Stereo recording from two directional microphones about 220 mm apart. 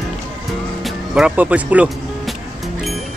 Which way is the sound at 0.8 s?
5° right (ahead or behind).